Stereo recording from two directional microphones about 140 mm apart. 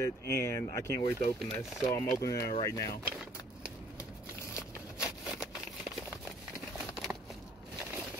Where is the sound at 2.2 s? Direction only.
25° left (ahead or behind).